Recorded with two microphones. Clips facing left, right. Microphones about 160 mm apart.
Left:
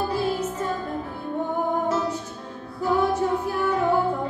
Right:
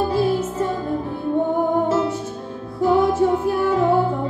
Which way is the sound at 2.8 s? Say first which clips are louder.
Right 5 dB; 30° right (ahead or behind).